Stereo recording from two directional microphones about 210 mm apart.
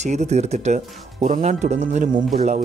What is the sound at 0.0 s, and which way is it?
Speech, 35° right (ahead or behind).